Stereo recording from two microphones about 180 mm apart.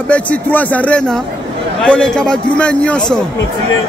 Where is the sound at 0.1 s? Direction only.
10° left (ahead or behind).